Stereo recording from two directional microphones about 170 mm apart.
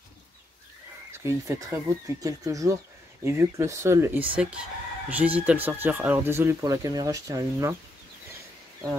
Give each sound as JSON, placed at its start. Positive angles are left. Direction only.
{"t": 1.1, "sound": "speech", "side_deg": -15}